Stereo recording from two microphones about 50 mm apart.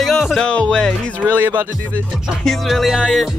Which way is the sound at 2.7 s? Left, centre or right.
Centre.